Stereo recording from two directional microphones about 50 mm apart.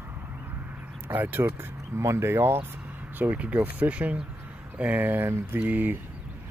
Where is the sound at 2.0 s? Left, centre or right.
Right.